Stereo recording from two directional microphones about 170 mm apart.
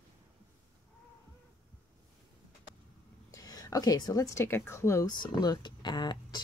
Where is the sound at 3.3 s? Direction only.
20° left (ahead or behind).